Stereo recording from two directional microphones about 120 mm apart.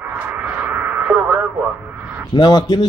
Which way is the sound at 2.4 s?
35° left (ahead or behind).